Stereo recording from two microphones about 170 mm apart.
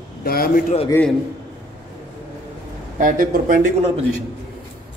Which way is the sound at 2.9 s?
55° right (ahead or behind).